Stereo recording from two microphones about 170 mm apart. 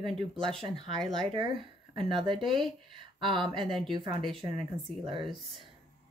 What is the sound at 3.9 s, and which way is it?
Speech, 30° right (ahead or behind).